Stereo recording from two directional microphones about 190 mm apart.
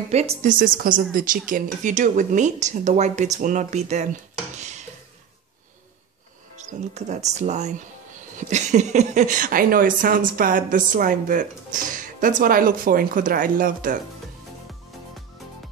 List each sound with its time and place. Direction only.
0.1 s speech: 35° right (ahead or behind)
4.6 s dishes: 35° right (ahead or behind)
6.5 s speech: 40° right (ahead or behind)